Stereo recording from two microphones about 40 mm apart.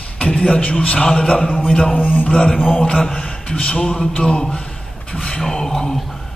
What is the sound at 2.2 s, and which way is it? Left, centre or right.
A man's voice, left.